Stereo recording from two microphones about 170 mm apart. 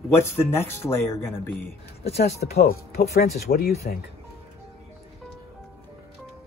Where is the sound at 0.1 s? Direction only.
15° left (ahead or behind).